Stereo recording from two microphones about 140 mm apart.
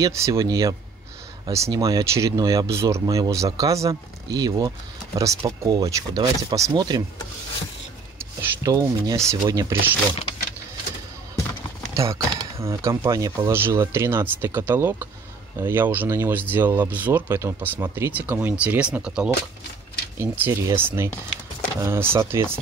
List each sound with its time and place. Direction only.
0.0 s speech: 20° right (ahead or behind)
8.2 s speech: 20° right (ahead or behind)
11.9 s speech: 20° right (ahead or behind)
20.2 s speech: 15° right (ahead or behind)